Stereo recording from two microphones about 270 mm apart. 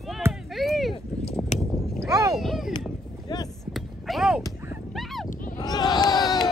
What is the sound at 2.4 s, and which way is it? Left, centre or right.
Speech, centre.